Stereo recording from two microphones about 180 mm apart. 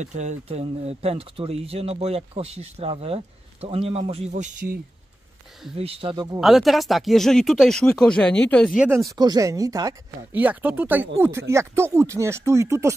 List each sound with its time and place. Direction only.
0.0 s speech: 40° right (ahead or behind)
5.8 s speech: 30° right (ahead or behind)
6.4 s speech: centre (ahead or behind)
8.7 s speech: 10° right (ahead or behind)